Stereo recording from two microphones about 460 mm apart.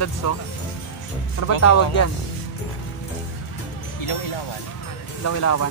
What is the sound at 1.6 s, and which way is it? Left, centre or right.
Speech, left.